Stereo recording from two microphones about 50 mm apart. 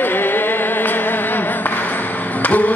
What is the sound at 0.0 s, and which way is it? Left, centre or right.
Music, left.